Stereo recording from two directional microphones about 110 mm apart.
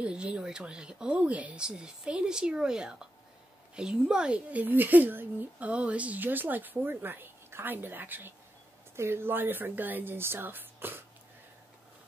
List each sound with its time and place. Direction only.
0.0 s speech: 10° right (ahead or behind)